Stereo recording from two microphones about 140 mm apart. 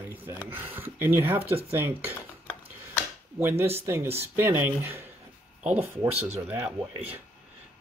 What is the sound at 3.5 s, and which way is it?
Speech, 45° right (ahead or behind).